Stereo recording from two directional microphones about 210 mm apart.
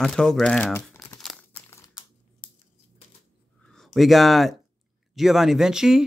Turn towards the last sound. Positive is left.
turn(degrees=0)  # may be behind; listen again after turning